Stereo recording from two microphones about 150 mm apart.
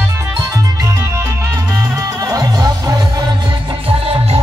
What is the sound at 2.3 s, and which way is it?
Music, 25° right (ahead or behind).